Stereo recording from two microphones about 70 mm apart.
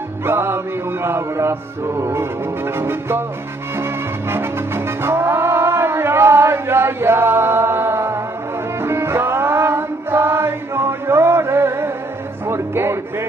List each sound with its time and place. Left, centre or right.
0.2 s music: right